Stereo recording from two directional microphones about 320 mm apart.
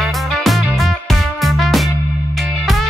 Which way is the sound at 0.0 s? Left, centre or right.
Centre.